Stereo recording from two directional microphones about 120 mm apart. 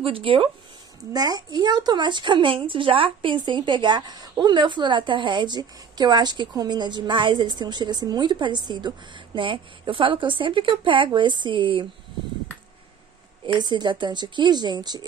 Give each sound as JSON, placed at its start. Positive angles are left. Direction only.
{"t": 0.0, "sound": "speech", "side_deg": -50}
{"t": 1.1, "sound": "a woman's voice", "side_deg": -35}
{"t": 13.5, "sound": "a woman's voice", "side_deg": -40}